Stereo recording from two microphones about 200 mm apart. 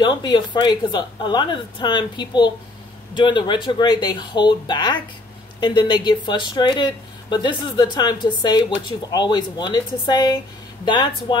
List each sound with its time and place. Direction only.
0.0 s speech: 20° left (ahead or behind)